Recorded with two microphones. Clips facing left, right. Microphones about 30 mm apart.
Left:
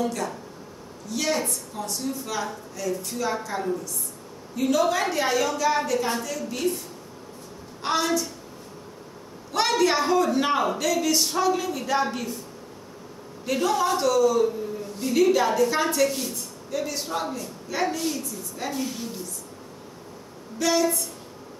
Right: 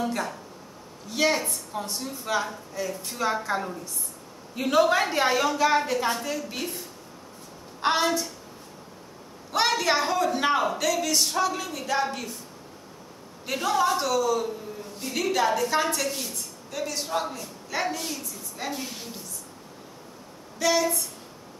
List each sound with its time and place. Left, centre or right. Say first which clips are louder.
0.0 s speech: left 1 dB; right
7.8 s speech: right 1 dB; right
9.5 s a woman's voice: left 1 dB; centre
13.5 s a woman's voice: left 1 dB; centre
20.5 s a woman's voice: left 1 dB; centre